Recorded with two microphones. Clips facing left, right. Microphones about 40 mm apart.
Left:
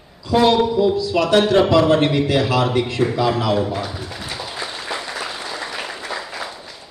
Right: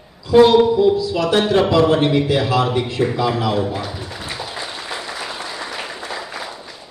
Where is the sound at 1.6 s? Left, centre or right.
Centre.